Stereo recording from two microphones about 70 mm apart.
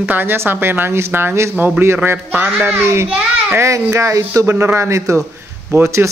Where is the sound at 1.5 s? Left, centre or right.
Right.